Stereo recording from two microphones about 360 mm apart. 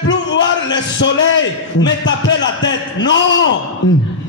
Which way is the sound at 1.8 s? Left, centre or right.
Left.